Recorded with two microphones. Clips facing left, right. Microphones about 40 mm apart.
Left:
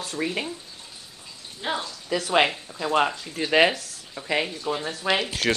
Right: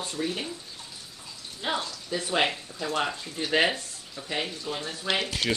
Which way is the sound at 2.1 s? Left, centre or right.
Left.